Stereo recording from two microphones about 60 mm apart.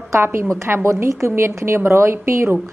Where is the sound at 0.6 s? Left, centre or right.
Right.